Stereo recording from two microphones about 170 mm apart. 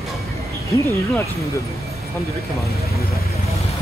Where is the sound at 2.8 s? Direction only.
20° right (ahead or behind).